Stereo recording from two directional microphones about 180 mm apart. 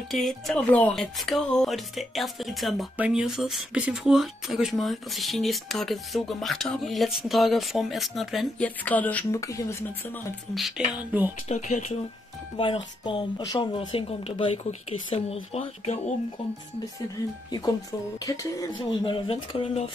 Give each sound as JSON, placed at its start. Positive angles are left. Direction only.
{"t": 0.1, "sound": "speech", "side_deg": 0}
{"t": 10.5, "sound": "a sound", "side_deg": 0}
{"t": 11.4, "sound": "speech", "side_deg": 40}
{"t": 12.5, "sound": "speech", "side_deg": 30}
{"t": 17.5, "sound": "speech", "side_deg": 25}